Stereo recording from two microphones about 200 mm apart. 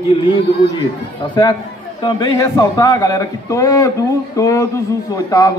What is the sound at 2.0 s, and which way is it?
A man's voice, 20° left (ahead or behind).